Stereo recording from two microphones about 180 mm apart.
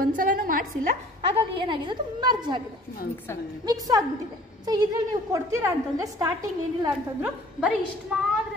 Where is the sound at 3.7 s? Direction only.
20° right (ahead or behind).